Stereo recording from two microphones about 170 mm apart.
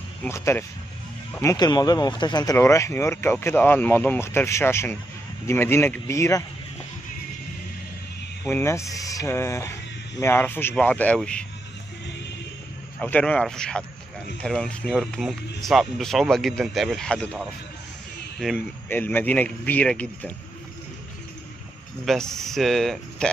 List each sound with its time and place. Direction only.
0.2 s speech: 15° left (ahead or behind)
8.5 s speech: 15° left (ahead or behind)
13.0 s speech: 10° left (ahead or behind)
22.0 s speech: centre (ahead or behind)